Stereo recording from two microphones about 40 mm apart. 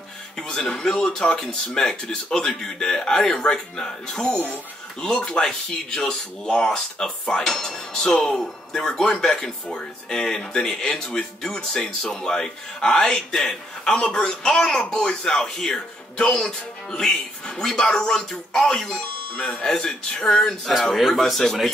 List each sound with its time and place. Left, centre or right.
0.4 s a man's voice: centre